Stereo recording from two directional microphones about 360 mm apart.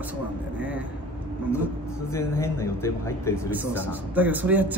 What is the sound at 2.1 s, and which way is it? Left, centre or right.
Speech, centre.